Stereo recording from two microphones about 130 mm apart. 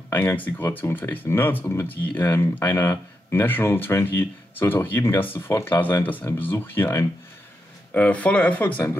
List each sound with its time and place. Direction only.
0.1 s speech: 15° left (ahead or behind)